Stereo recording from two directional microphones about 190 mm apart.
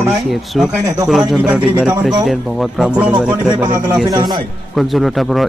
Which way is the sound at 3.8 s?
20° right (ahead or behind).